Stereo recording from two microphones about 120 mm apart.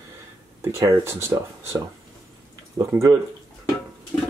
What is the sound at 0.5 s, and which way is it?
Speech, 25° right (ahead or behind).